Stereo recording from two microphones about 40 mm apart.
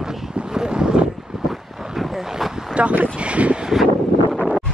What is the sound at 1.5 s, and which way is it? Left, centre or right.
Vehicle, centre.